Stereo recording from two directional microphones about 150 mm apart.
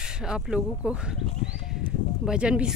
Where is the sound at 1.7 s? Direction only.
5° right (ahead or behind).